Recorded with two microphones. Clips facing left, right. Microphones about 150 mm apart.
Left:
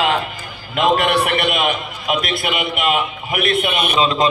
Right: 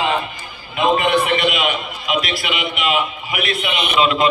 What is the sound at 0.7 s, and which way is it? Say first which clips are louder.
A man's voice: even; 75° left (ahead or behind).